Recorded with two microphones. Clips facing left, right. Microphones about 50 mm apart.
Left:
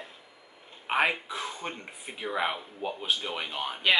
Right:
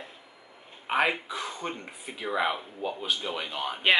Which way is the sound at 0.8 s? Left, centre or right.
Centre.